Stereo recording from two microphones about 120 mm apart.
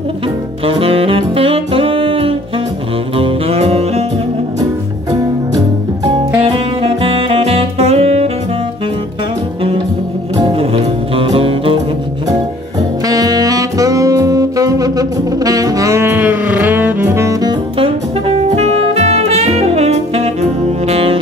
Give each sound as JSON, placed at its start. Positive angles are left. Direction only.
{"t": 0.7, "sound": "saxophone", "side_deg": -50}
{"t": 3.2, "sound": "music", "side_deg": -50}
{"t": 6.8, "sound": "saxophone", "side_deg": -50}
{"t": 10.5, "sound": "music", "side_deg": -55}
{"t": 13.0, "sound": "saxophone", "side_deg": -30}
{"t": 17.7, "sound": "music", "side_deg": -55}